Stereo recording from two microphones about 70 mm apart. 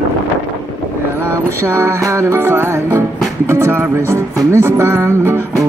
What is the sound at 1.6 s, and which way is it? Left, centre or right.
Music, right.